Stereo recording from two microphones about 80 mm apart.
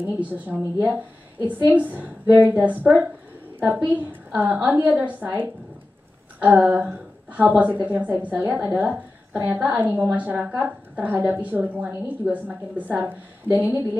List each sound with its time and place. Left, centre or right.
0.1 s a woman's voice: centre
8.8 s a woman's voice: centre